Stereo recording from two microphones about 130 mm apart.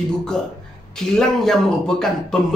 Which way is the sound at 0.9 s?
5° left (ahead or behind).